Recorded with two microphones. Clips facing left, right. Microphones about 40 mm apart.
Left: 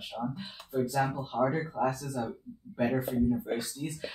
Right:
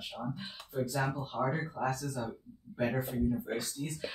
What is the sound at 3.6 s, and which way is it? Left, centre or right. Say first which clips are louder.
Speech: left 2 dB; centre.